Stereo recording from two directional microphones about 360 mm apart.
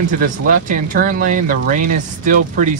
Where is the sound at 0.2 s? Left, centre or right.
Right.